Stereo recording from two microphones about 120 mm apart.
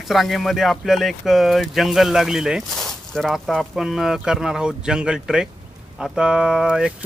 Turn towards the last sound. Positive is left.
turn(degrees=-5)  # may be behind; listen again after turning